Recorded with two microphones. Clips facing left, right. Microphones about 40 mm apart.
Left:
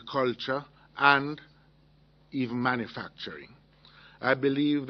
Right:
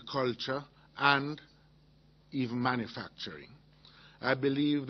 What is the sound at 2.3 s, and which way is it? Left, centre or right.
A man's voice, centre.